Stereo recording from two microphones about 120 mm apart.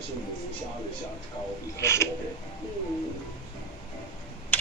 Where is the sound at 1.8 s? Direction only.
25° left (ahead or behind).